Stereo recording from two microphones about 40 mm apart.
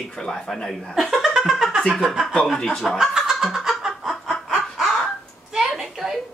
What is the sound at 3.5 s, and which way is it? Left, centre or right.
Chicken, centre.